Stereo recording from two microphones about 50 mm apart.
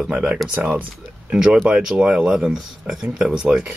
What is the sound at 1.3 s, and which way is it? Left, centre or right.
Speech, right.